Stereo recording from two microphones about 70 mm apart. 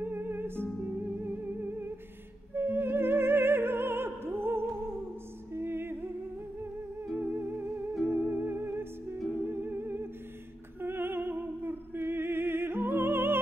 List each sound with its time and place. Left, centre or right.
0.0 s music: right
2.5 s opera: right
5.5 s music: right
7.2 s music: right
10.8 s opera: right